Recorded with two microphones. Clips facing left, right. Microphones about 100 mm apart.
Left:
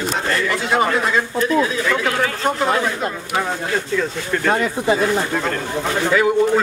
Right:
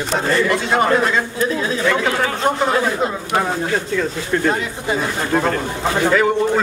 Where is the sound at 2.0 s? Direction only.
30° right (ahead or behind).